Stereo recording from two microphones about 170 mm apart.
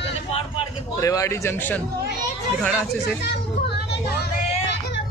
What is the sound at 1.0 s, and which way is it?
Speech, 20° left (ahead or behind).